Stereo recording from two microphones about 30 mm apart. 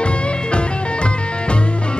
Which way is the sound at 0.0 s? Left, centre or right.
Left.